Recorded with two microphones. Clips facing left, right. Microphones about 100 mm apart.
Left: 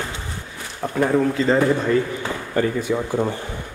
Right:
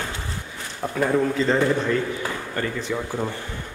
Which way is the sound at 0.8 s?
Centre (ahead or behind).